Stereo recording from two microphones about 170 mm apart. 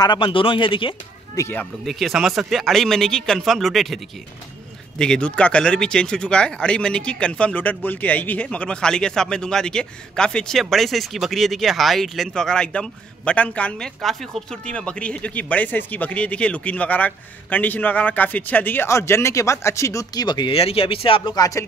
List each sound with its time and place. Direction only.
0.0 s speech: 30° left (ahead or behind)
1.4 s speech: 10° left (ahead or behind)
1.9 s a man's voice: centre (ahead or behind); by 21.6 s 20° left (ahead or behind)